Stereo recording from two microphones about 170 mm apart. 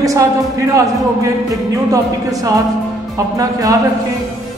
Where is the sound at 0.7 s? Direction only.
20° right (ahead or behind).